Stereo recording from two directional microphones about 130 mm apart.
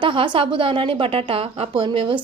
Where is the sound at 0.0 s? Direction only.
40° right (ahead or behind).